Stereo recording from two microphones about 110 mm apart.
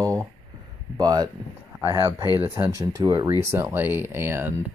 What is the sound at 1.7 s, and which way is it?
Speech, 25° right (ahead or behind).